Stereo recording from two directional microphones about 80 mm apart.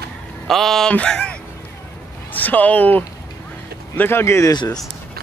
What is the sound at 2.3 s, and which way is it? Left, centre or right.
Speech, left.